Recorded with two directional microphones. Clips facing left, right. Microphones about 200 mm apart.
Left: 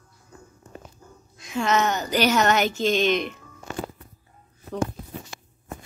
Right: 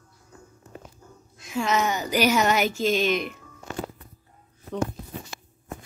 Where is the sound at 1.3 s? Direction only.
5° right (ahead or behind).